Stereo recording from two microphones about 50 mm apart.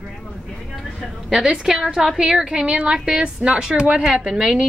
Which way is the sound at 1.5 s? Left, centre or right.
Centre.